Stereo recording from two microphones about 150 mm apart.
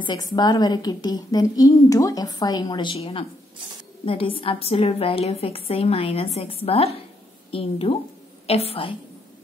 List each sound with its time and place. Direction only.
0.0 s a woman's voice: 30° left (ahead or behind)